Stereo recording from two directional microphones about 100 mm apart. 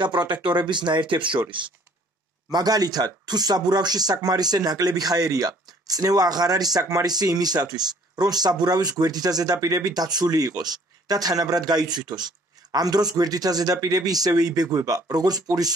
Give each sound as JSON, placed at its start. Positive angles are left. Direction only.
{"t": 0.0, "sound": "speech", "side_deg": -50}
{"t": 2.5, "sound": "speech", "side_deg": -40}